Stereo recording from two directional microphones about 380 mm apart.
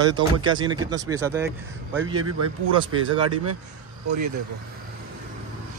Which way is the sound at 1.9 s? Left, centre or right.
Right.